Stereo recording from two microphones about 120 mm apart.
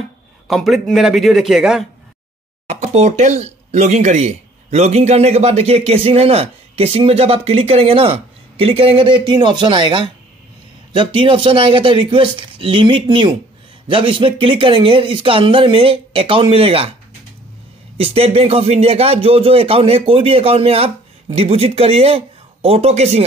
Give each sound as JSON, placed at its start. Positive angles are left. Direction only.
{"t": 0.5, "sound": "a man's voice", "side_deg": 0}
{"t": 2.6, "sound": "speech", "side_deg": -70}
{"t": 17.9, "sound": "speech", "side_deg": -55}